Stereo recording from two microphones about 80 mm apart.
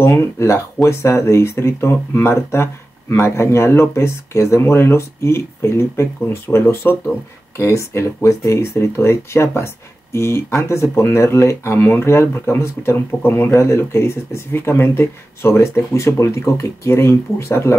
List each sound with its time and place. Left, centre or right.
0.0 s speech: left